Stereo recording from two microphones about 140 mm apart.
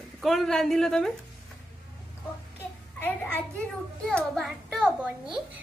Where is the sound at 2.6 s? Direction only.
15° left (ahead or behind).